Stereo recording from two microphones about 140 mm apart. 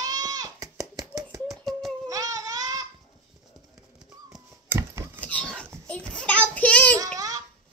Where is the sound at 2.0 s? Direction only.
25° right (ahead or behind).